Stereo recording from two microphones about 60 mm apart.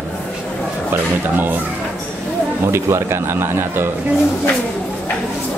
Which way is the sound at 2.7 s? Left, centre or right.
Right.